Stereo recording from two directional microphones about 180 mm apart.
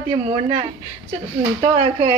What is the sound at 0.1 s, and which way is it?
Speech, 30° right (ahead or behind).